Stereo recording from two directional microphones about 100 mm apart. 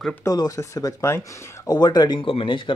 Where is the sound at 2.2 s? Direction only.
65° left (ahead or behind).